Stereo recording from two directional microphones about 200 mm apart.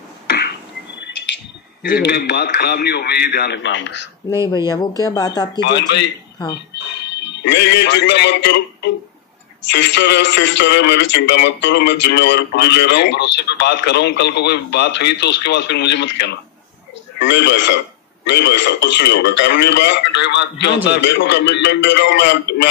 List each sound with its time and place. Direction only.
0.3 s a sound: 55° left (ahead or behind)
1.8 s a man's voice: 55° left (ahead or behind)
4.6 s speech: 20° left (ahead or behind)
5.6 s a man's voice: 60° left (ahead or behind)
7.2 s a man's voice: 60° left (ahead or behind)